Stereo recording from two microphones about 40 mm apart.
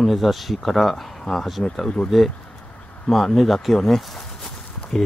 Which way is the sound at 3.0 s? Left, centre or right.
Centre.